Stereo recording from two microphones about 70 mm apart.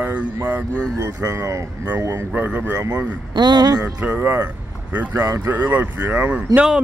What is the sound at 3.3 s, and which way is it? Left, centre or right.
Speech, right.